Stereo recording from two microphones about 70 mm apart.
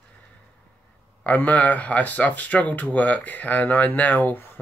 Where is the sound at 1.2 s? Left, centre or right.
Left.